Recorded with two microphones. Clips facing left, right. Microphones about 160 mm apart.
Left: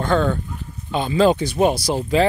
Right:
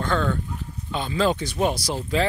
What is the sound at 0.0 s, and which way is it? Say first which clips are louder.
Speech: left 5 dB; 20° left (ahead or behind).